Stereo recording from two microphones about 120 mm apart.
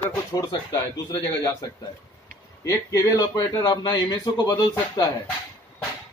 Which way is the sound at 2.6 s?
25° left (ahead or behind).